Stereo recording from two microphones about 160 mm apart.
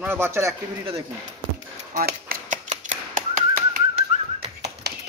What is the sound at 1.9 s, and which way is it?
Typewriter, 65° right (ahead or behind).